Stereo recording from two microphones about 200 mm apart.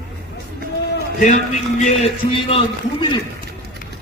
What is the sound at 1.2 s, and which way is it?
A man's voice, 35° left (ahead or behind).